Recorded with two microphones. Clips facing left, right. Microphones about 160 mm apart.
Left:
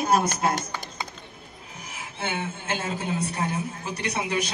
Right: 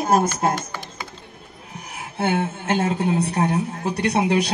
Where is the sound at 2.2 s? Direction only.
60° right (ahead or behind).